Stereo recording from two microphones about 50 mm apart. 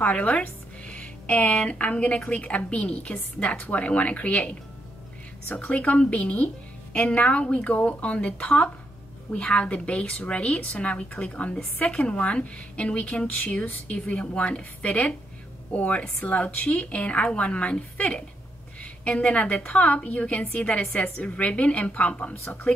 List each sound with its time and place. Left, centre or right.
0.0 s a woman's voice: left
5.6 s a woman's voice: left